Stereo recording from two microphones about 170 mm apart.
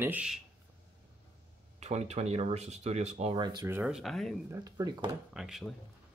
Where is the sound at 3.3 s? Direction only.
25° right (ahead or behind).